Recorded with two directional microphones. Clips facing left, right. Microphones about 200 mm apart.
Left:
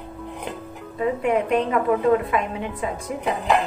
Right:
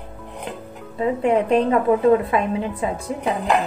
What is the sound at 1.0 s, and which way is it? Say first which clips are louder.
Speech: right 2 dB; 30° right (ahead or behind).